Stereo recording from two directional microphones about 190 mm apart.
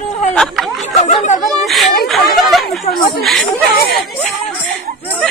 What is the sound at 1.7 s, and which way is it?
Speech, centre (ahead or behind).